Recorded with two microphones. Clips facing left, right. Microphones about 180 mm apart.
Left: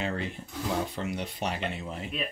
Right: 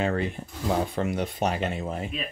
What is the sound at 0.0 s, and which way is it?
Speech, 50° right (ahead or behind).